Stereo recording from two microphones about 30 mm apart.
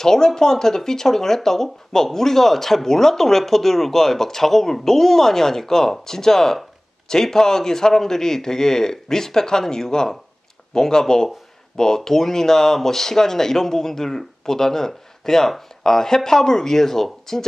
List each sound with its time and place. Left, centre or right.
0.0 s speech: centre